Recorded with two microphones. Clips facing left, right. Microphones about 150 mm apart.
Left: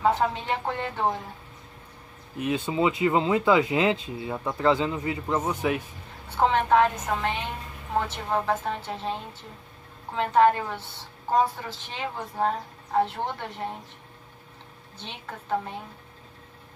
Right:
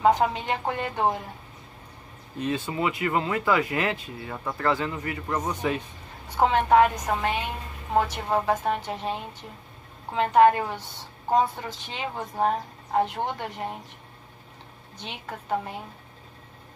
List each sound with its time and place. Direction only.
0.0 s a woman's voice: 15° right (ahead or behind)
2.3 s speech: 10° left (ahead or behind)
6.2 s a woman's voice: 10° right (ahead or behind)
11.9 s a woman's voice: 15° right (ahead or behind)
15.0 s a woman's voice: 15° right (ahead or behind)